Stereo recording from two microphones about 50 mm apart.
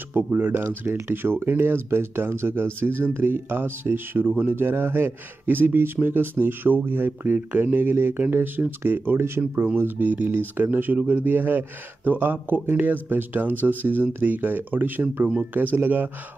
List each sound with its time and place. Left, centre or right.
0.1 s speech: right
0.7 s speech: right
15.2 s speech: right